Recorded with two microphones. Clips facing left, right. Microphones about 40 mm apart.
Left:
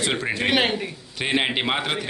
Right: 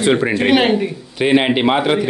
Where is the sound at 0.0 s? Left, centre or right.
Centre.